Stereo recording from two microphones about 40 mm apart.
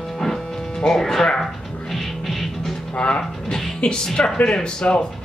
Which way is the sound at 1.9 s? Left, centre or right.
Centre.